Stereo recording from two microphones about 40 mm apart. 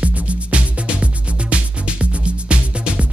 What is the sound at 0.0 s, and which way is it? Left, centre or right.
Music, right.